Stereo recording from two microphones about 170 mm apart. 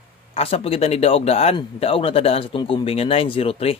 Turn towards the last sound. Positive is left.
turn(degrees=35)  # may be behind; listen again after turning